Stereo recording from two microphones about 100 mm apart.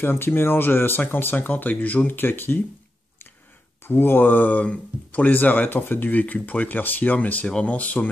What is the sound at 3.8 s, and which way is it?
Speech, 20° left (ahead or behind).